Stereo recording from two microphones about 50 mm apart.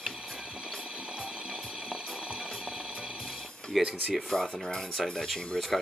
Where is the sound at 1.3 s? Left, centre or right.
Centre.